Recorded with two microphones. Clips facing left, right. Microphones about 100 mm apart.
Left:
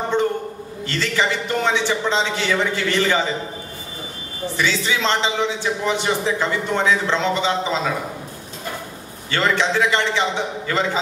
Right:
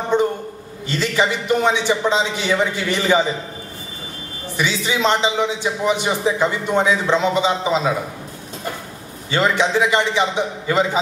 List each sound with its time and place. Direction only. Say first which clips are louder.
0.1 s a sound: right 3 dB; 15° right (ahead or behind)
0.8 s a man's voice: right 2 dB; 15° right (ahead or behind)
4.6 s a man's voice: right 1 dB; 15° right (ahead or behind)
9.3 s a man's voice: right 2 dB; 15° right (ahead or behind)